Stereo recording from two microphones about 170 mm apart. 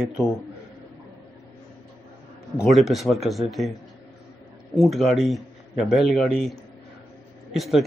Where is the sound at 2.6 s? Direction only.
Centre (ahead or behind).